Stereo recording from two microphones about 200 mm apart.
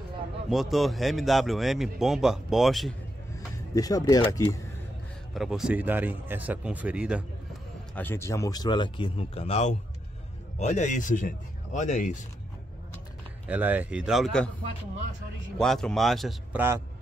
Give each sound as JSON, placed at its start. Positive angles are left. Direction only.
{"t": 0.5, "sound": "speech", "side_deg": 0}
{"t": 3.3, "sound": "speech", "side_deg": 15}
{"t": 5.3, "sound": "speech", "side_deg": 0}
{"t": 7.9, "sound": "speech", "side_deg": 10}
{"t": 13.5, "sound": "speech", "side_deg": -10}
{"t": 15.6, "sound": "speech", "side_deg": 0}